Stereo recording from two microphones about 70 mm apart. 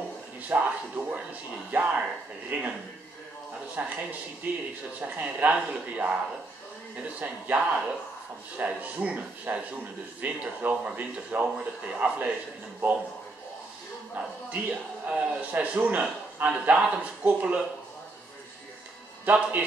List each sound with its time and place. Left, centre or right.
0.5 s a man's voice: centre
3.8 s a man's voice: right
7.2 s a man's voice: right
14.1 s a man's voice: right
19.2 s a man's voice: right